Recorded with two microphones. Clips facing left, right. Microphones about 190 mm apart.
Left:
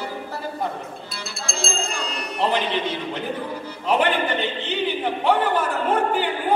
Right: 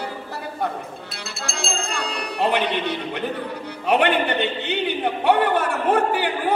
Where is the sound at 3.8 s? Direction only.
65° right (ahead or behind).